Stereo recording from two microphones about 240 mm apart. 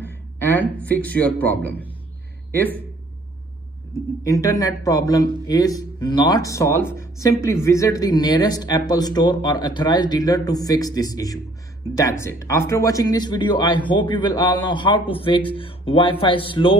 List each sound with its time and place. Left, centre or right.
0.0 s a man's voice: centre
4.2 s speech: centre